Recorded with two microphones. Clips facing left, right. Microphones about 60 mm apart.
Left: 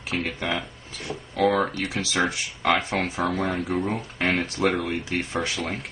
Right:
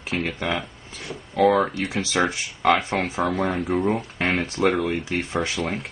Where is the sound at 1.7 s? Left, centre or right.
Centre.